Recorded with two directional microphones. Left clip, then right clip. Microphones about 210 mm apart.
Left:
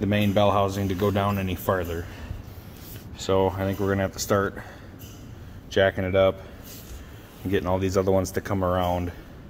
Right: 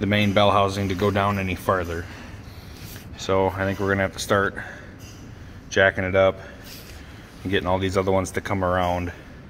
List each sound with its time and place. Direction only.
0.0 s speech: 5° left (ahead or behind)
3.2 s speech: 20° left (ahead or behind)
7.4 s speech: 10° left (ahead or behind)